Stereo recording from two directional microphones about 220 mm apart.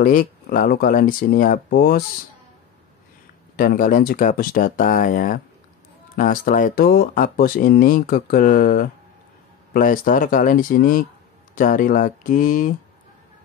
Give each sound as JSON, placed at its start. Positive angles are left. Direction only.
{"t": 0.0, "sound": "speech", "side_deg": 35}
{"t": 3.5, "sound": "speech", "side_deg": 40}